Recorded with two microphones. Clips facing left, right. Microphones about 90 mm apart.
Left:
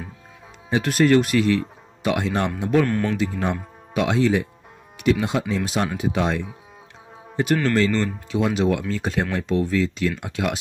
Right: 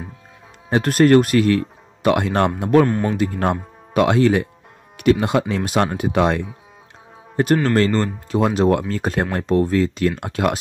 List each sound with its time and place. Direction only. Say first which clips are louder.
0.7 s speech: right 4 dB; 50° right (ahead or behind)
2.9 s speech: right 2 dB; 20° right (ahead or behind)
3.2 s speech: right 4 dB; 55° right (ahead or behind)
7.7 s speech: right 3 dB; 45° right (ahead or behind)